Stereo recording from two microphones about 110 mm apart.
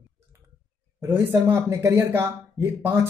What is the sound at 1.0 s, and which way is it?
Speech, 25° right (ahead or behind).